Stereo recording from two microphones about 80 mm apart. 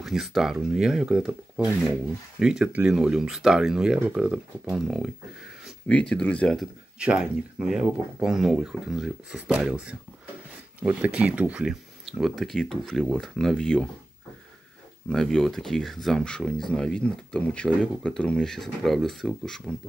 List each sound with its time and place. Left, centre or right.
0.0 s speech: centre
5.9 s speech: centre
7.0 s speech: centre
12.2 s speech: centre
15.0 s speech: centre